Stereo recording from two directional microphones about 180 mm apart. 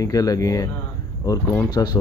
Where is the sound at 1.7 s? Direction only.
25° left (ahead or behind).